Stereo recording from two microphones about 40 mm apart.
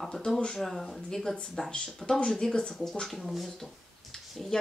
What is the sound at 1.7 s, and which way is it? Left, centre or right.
A woman's voice, left.